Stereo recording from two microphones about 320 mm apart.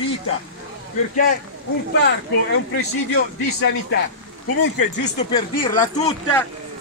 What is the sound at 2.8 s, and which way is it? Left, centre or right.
Speech, left.